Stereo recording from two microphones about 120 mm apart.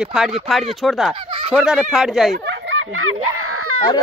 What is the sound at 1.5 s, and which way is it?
Speech, 5° right (ahead or behind).